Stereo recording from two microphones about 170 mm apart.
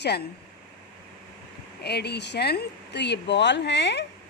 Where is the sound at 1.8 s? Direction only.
75° left (ahead or behind).